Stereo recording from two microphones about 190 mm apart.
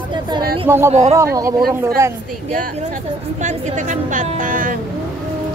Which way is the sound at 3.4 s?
40° right (ahead or behind).